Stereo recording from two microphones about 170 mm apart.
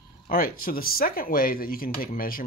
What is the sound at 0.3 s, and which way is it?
Speech, 60° left (ahead or behind).